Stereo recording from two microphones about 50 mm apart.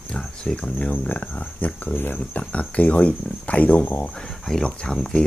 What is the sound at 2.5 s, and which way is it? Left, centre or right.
Speech, left.